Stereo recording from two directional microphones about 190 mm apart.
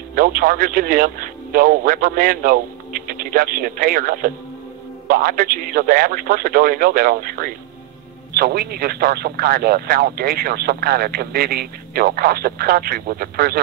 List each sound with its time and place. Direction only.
0.1 s speech: 45° right (ahead or behind)